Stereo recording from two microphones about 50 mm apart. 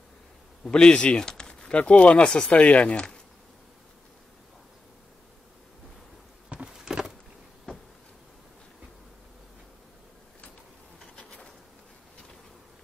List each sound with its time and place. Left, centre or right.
0.7 s speech: centre
6.7 s a sound: centre
11.1 s bee: centre